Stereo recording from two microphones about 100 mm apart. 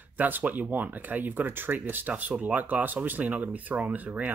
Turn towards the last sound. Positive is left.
turn(degrees=-15)  # may be behind; listen again after turning